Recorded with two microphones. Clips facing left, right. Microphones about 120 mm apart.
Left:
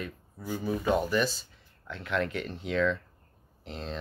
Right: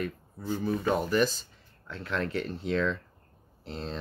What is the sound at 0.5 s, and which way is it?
Speech, 15° left (ahead or behind).